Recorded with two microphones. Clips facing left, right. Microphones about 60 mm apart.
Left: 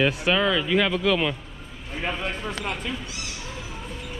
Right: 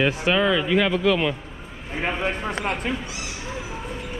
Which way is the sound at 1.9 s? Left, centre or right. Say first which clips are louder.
Right 4 dB; right.